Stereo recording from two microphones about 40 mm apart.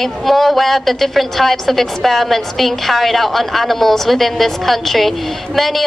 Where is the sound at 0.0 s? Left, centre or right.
Centre.